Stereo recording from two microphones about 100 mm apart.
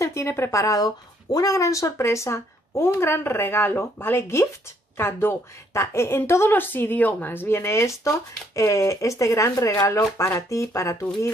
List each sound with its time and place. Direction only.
0.0 s a woman's voice: 30° left (ahead or behind)